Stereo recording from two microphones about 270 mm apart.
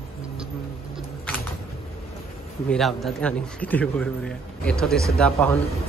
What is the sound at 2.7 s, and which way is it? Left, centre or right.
A man's voice, centre.